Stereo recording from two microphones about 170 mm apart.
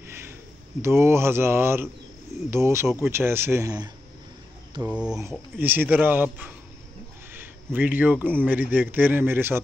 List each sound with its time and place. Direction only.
0.0 s a sound: 15° right (ahead or behind)
0.8 s a man's voice: 15° right (ahead or behind)
4.8 s a man's voice: 5° right (ahead or behind)